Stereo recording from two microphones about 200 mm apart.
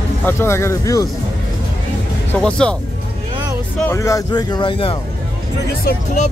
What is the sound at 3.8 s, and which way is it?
Speech, 15° left (ahead or behind).